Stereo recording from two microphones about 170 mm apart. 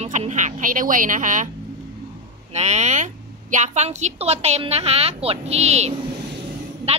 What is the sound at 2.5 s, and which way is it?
A woman's voice, 45° right (ahead or behind).